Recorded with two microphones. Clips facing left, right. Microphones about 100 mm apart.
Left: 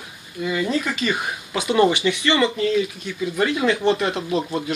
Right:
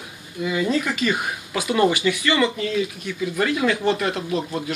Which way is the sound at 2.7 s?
10° left (ahead or behind).